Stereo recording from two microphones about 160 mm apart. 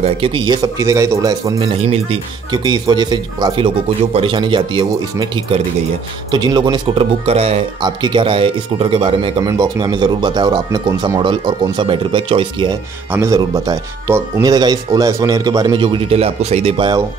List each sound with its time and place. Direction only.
0.0 s speech: 35° right (ahead or behind)
1.6 s speech: 35° right (ahead or behind)
2.5 s speech: 25° right (ahead or behind)
7.8 s speech: 30° right (ahead or behind)
13.1 s speech: 20° right (ahead or behind); by 16.9 s 35° right (ahead or behind)